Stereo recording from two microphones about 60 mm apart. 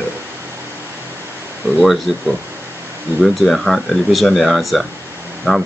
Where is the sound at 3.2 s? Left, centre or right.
Centre.